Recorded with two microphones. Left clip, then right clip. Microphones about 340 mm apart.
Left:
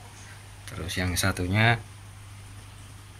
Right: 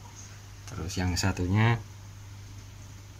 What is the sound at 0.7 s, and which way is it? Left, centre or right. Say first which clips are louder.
Speech: left 3 dB; centre.